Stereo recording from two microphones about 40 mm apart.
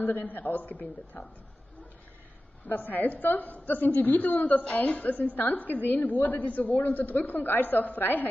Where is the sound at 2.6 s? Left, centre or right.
Left.